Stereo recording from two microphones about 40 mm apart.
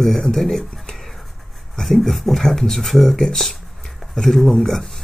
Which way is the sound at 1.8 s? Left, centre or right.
Centre.